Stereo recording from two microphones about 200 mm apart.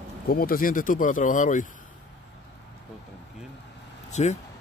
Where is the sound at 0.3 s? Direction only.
45° left (ahead or behind).